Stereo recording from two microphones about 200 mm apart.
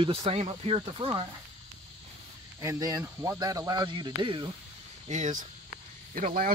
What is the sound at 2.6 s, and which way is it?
Speech, 15° right (ahead or behind).